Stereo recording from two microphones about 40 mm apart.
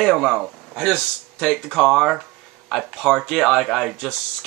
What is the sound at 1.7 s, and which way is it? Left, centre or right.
Speech, centre.